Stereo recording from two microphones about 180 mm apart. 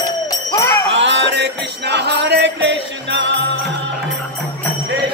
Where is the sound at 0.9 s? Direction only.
85° right.